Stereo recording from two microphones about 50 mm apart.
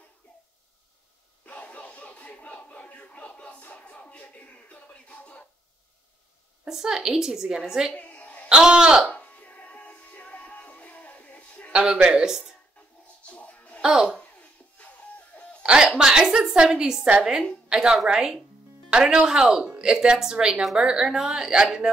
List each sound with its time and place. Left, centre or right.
1.4 s a sound: left
6.7 s a woman's voice: centre
7.9 s a sound: left
8.5 s a woman's voice: centre
9.1 s music: left
11.7 s a woman's voice: centre
13.3 s music: left
13.7 s speech: centre
14.4 s music: left
15.6 s a woman's voice: centre